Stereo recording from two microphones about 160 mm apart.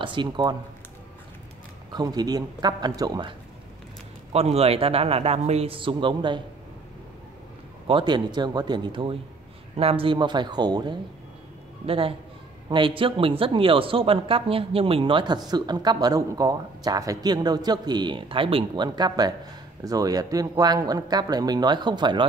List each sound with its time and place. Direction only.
0.0 s speech: 30° right (ahead or behind)
1.9 s speech: 25° right (ahead or behind)
4.3 s a man's voice: 40° right (ahead or behind)
7.8 s speech: 30° right (ahead or behind)
11.8 s a man's voice: 35° right (ahead or behind)